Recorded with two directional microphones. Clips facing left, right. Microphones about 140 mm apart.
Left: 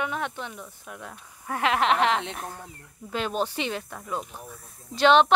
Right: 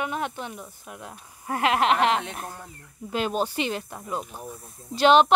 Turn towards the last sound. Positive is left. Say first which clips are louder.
# right 1 dB
turn(degrees=-5)  # may be behind; listen again after turning